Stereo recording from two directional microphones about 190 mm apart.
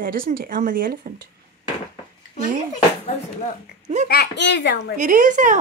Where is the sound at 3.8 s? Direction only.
40° right (ahead or behind).